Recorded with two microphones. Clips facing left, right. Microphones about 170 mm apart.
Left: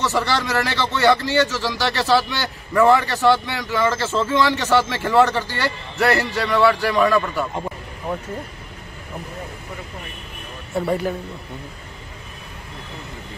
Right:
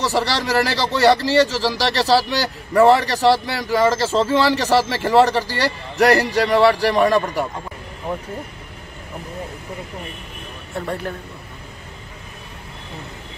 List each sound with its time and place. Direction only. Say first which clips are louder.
0.0 s speech: right 1 dB; 35° right (ahead or behind)
10.7 s speech: left 5 dB; 5° left (ahead or behind)